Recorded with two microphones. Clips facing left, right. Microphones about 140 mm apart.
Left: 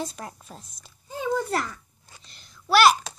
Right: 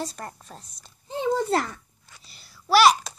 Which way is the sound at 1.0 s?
25° right (ahead or behind).